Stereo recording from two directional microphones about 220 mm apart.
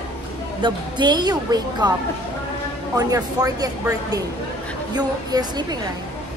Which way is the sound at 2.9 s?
15° right (ahead or behind).